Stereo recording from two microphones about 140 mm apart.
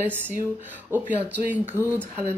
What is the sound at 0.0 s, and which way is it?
Speech, 15° right (ahead or behind).